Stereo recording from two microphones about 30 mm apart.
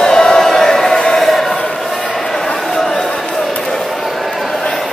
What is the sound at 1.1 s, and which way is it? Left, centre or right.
Chant, centre.